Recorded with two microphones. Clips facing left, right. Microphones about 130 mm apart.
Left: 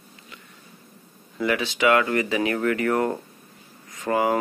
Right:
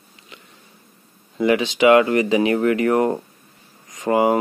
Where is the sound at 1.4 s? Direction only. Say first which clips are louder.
Right 6 dB; 20° right (ahead or behind).